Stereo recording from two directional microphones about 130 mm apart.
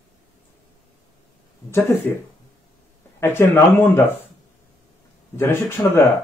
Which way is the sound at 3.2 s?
15° left (ahead or behind).